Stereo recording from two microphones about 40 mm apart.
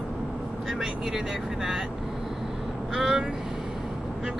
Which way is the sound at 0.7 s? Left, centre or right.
Centre.